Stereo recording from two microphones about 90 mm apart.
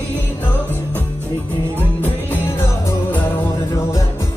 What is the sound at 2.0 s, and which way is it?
Music, 25° left (ahead or behind).